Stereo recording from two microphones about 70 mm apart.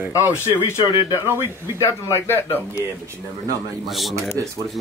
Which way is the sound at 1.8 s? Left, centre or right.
Left.